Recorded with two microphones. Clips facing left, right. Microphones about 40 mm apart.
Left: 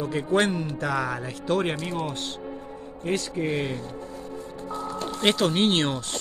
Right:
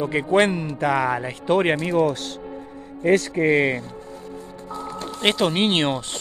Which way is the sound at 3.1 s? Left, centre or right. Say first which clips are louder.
Right 9 dB; right.